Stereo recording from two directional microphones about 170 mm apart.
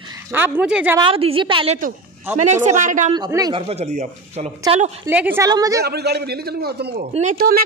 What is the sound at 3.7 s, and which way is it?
Speech, 40° right (ahead or behind).